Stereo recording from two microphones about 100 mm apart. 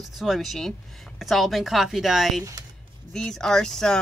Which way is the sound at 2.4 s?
30° right (ahead or behind).